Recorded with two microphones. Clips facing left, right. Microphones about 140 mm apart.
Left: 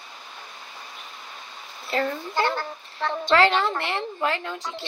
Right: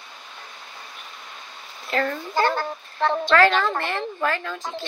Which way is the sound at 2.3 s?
50° right (ahead or behind).